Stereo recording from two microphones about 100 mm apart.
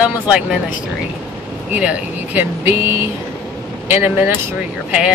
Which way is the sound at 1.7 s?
15° right (ahead or behind).